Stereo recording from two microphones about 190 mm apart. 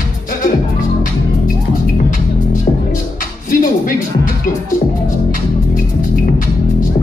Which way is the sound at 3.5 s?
45° left (ahead or behind).